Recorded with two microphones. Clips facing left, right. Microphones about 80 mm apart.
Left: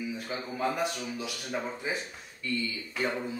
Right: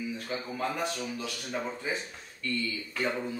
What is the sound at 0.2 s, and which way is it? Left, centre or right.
A man's voice, centre.